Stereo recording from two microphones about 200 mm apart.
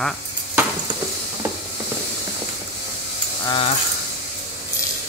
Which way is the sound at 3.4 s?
20° left (ahead or behind).